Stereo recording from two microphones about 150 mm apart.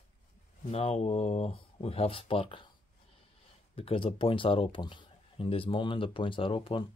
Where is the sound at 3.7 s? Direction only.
40° left (ahead or behind).